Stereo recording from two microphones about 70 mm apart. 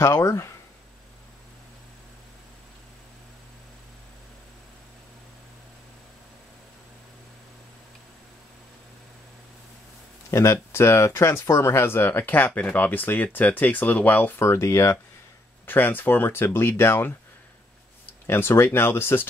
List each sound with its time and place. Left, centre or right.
0.0 s speech: left
10.3 s speech: left
14.4 s speech: left
15.6 s speech: left